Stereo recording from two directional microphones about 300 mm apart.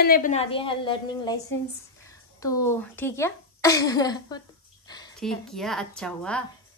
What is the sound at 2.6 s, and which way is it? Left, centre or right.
A woman's voice, centre.